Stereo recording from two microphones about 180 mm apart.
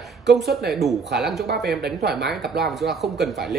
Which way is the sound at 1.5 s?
60° right (ahead or behind).